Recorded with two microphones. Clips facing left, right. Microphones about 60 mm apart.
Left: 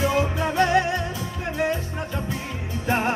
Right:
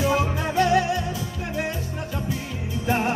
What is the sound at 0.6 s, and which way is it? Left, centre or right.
Music, left.